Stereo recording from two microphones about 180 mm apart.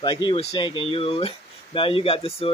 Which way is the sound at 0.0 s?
25° left (ahead or behind).